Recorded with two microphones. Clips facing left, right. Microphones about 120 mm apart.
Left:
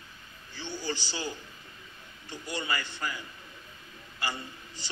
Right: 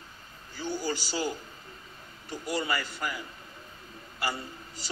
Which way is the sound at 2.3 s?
30° right (ahead or behind).